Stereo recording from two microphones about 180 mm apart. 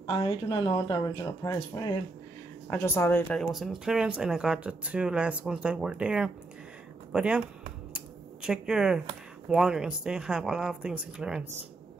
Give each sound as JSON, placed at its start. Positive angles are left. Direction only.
{"t": 0.0, "sound": "speech", "side_deg": 25}
{"t": 3.3, "sound": "speech", "side_deg": 0}
{"t": 7.9, "sound": "scissors", "side_deg": -5}
{"t": 9.5, "sound": "speech", "side_deg": -5}